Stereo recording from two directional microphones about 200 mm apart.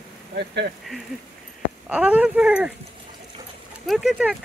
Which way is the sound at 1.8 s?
5° right (ahead or behind).